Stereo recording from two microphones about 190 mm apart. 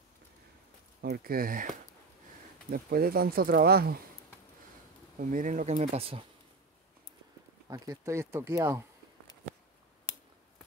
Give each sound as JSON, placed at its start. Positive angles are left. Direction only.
{"t": 1.0, "sound": "speech", "side_deg": -50}
{"t": 2.7, "sound": "speech", "side_deg": -50}
{"t": 5.3, "sound": "speech", "side_deg": -45}
{"t": 7.7, "sound": "speech", "side_deg": -15}